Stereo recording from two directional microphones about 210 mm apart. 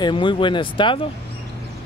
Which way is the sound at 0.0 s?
25° left (ahead or behind).